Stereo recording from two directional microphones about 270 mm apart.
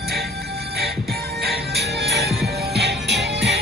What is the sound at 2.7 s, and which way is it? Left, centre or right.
Music, right.